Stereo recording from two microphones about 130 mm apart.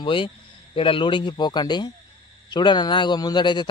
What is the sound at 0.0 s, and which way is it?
Speech, 40° left (ahead or behind).